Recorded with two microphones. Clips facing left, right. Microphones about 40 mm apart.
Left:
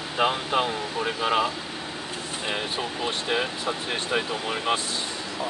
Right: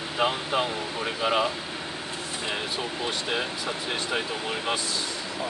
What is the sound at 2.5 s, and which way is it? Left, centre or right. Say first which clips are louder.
Speech: left 2 dB; centre.